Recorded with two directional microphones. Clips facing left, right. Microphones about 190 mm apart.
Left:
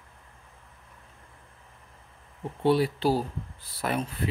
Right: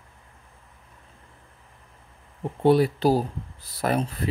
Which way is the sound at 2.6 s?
45° right (ahead or behind).